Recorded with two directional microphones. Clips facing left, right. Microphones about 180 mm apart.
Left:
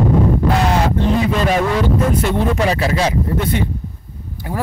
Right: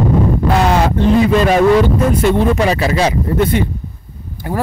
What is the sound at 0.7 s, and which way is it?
Speech, 85° right.